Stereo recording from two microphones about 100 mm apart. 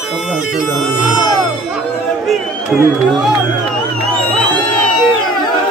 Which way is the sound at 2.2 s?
Centre (ahead or behind).